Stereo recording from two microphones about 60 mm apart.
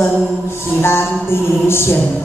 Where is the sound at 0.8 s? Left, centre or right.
Left.